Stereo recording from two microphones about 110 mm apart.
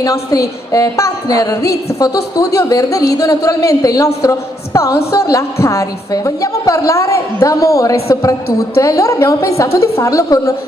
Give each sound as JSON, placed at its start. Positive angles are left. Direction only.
{"t": 0.0, "sound": "a woman's voice", "side_deg": 30}